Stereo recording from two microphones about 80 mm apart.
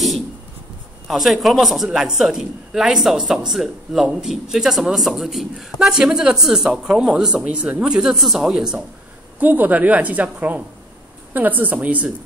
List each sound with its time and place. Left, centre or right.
1.0 s a woman's voice: centre
9.4 s a woman's voice: right